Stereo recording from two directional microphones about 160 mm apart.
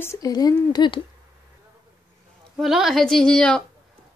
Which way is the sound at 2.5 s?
Centre (ahead or behind).